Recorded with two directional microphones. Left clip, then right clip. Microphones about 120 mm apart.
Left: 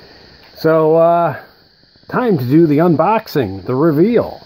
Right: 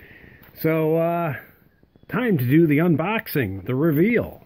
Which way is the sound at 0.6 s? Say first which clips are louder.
Left 10 dB; 30° right (ahead or behind).